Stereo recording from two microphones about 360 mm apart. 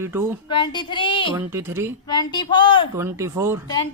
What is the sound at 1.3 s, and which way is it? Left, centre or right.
Speech, centre.